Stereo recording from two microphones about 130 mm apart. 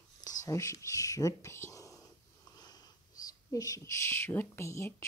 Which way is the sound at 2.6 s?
30° left (ahead or behind).